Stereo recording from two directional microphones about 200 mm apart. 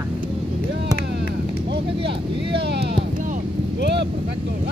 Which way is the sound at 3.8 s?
60° right (ahead or behind).